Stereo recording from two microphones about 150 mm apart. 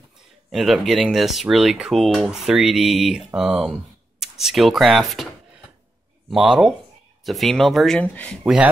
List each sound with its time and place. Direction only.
0.5 s speech: centre (ahead or behind)
6.3 s speech: centre (ahead or behind)